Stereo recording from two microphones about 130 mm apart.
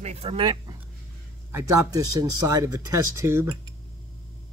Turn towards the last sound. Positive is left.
turn(degrees=-20)  # may be behind; listen again after turning